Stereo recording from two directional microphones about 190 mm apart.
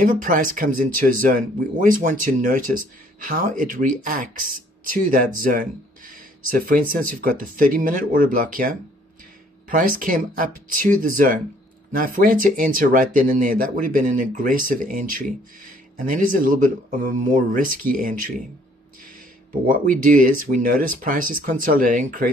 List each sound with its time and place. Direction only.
0.0 s speech: 45° right (ahead or behind)